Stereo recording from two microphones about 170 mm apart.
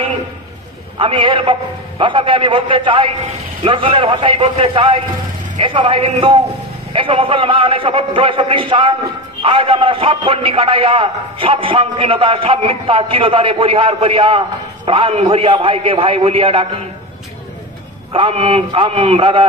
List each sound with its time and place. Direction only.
0.9 s a man's voice: 30° right (ahead or behind)
18.1 s a man's voice: 35° right (ahead or behind)